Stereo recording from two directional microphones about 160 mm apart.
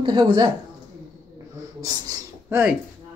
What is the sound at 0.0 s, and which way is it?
Speech, 30° right (ahead or behind).